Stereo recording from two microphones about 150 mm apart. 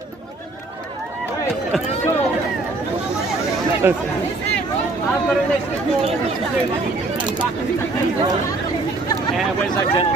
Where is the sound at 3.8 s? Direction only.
15° right (ahead or behind).